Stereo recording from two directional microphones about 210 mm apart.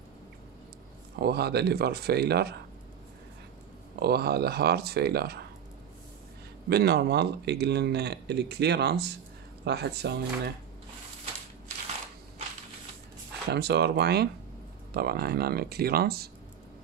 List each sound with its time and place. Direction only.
1.1 s speech: 50° right (ahead or behind)
4.0 s speech: 50° right (ahead or behind)
6.7 s speech: 50° right (ahead or behind)
13.5 s speech: 55° right (ahead or behind)